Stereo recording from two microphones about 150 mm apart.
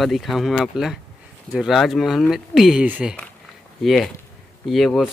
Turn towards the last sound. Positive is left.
turn(degrees=0)  # may be behind; listen again after turning